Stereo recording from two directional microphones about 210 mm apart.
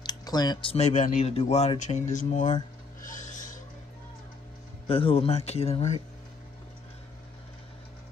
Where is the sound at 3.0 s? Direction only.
40° left (ahead or behind).